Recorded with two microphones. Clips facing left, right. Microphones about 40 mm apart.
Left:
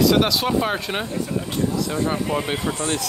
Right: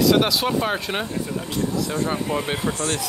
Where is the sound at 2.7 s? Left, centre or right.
Left.